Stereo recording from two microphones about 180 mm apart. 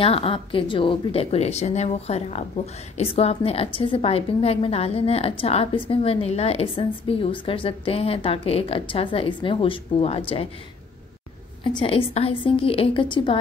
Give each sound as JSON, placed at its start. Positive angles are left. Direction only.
{"t": 0.0, "sound": "a woman's voice", "side_deg": 30}
{"t": 11.6, "sound": "a woman's voice", "side_deg": 30}